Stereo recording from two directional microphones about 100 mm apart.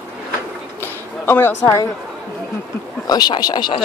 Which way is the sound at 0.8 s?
20° left (ahead or behind).